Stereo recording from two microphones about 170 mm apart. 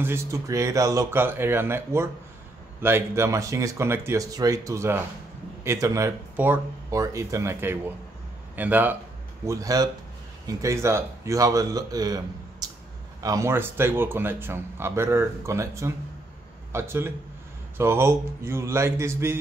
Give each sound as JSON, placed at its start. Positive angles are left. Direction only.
{"t": 0.0, "sound": "speech", "side_deg": -15}